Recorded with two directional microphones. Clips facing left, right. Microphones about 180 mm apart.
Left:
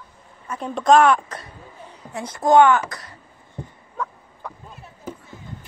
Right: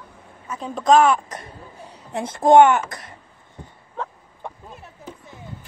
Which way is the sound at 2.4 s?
20° right (ahead or behind).